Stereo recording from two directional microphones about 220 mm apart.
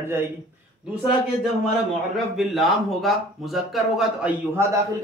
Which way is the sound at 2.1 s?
Centre (ahead or behind).